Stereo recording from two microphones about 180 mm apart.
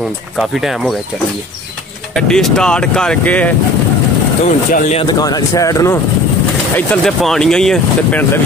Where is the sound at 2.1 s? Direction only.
5° left (ahead or behind).